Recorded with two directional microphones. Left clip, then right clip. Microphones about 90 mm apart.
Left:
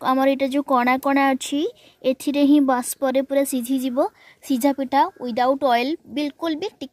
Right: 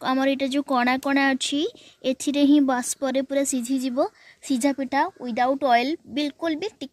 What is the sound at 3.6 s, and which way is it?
A woman's voice, 25° left (ahead or behind).